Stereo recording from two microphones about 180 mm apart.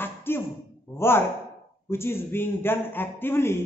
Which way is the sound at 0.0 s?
10° left (ahead or behind).